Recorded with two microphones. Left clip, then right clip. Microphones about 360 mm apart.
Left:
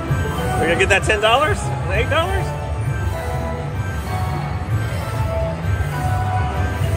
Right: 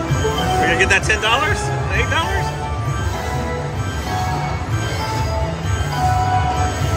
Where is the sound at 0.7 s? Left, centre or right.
Centre.